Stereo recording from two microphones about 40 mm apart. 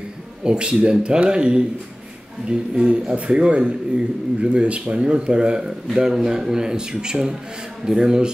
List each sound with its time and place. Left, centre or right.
0.4 s a man's voice: right